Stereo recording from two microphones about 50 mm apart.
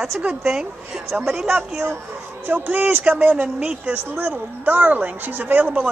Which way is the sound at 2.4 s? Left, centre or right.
Right.